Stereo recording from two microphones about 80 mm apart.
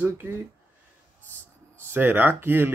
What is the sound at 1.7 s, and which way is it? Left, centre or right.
Speech, right.